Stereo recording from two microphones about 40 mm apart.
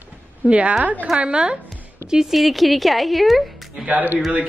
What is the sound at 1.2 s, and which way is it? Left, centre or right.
Speech, right.